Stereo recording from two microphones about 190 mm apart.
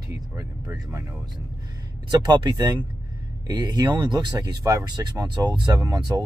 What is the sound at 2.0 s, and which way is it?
Speech, 20° right (ahead or behind).